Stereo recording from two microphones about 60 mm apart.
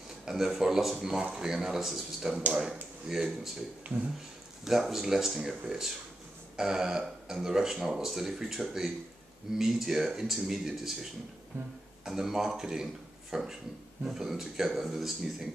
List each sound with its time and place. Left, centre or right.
0.2 s speech: centre
3.9 s speech: right
4.6 s speech: centre
6.5 s burping: centre
7.4 s speech: centre